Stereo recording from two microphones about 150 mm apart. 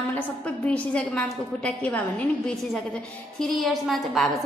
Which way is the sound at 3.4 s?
Centre (ahead or behind).